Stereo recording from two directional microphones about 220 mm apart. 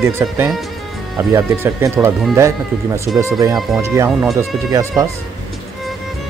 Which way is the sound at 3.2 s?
15° right (ahead or behind).